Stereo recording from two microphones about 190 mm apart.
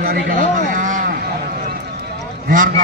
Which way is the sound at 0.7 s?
40° right (ahead or behind).